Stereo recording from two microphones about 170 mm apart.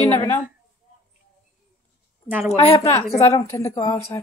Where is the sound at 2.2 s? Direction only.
10° right (ahead or behind).